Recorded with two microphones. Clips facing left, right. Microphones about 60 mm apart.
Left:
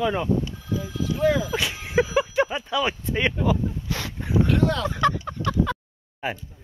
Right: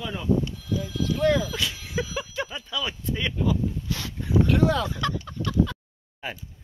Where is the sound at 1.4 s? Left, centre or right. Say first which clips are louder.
Left 3 dB; left.